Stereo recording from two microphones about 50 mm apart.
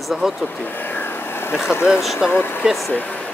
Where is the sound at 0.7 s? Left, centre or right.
Left.